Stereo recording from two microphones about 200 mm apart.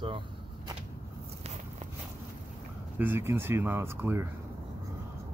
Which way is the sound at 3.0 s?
10° right (ahead or behind).